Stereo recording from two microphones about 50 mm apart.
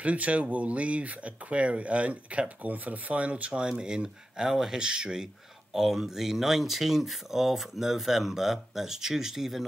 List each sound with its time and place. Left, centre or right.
0.0 s speech: right; by 9.7 s centre